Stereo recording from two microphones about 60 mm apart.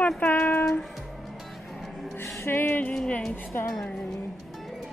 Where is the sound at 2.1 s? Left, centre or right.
Left.